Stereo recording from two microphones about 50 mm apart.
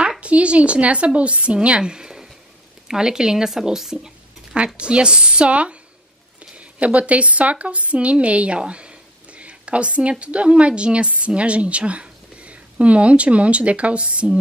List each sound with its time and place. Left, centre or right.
0.2 s a woman's voice: right